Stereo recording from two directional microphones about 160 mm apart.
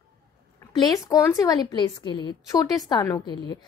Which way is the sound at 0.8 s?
20° left (ahead or behind).